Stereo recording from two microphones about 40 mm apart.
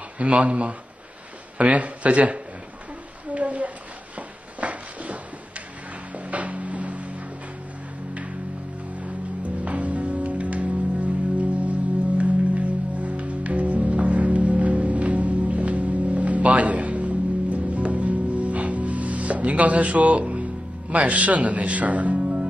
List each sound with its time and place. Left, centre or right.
0.2 s speech: right
3.3 s a sound: right
6.1 s music: right
20.9 s speech: right